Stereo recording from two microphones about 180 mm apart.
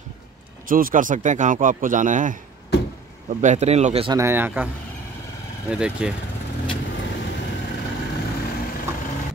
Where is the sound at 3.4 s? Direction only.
40° right (ahead or behind).